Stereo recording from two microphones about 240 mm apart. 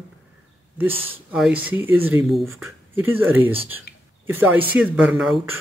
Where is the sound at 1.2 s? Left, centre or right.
Centre.